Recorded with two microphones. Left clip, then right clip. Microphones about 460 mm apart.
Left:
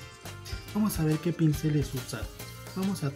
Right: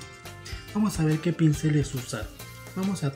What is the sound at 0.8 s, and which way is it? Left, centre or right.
Speech, left.